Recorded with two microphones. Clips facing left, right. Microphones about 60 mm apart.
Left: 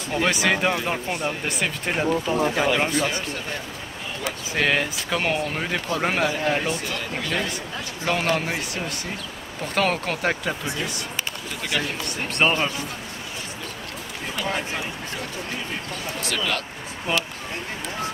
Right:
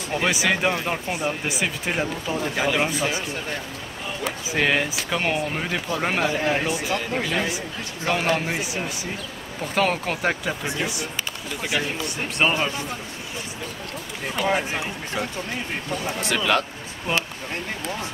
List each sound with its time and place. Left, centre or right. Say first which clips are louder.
0.1 s speech: left 1 dB; centre
11.6 s speech: right 1 dB; centre
14.4 s speech: right 4 dB; centre